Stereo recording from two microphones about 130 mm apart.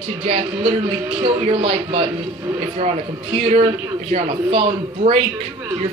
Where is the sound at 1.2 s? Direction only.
45° right (ahead or behind).